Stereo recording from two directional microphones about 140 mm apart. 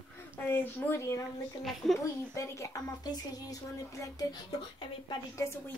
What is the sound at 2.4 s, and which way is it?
Speech, 20° left (ahead or behind).